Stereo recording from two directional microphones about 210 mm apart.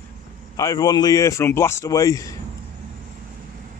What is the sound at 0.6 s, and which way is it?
A man's voice, 15° left (ahead or behind).